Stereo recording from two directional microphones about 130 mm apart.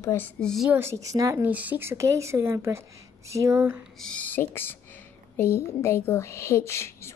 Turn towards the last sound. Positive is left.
turn(degrees=20)  # may be behind; listen again after turning